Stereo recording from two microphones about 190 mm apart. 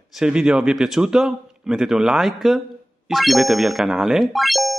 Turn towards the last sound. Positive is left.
turn(degrees=0)  # may be behind; listen again after turning